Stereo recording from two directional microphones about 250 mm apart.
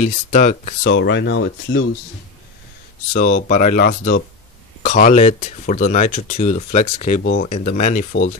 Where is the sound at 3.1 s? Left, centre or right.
Left.